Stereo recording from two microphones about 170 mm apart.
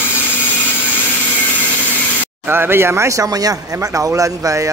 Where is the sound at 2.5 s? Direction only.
15° right (ahead or behind).